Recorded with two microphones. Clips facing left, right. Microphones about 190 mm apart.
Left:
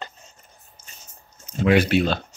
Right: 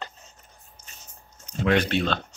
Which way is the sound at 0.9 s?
Centre (ahead or behind).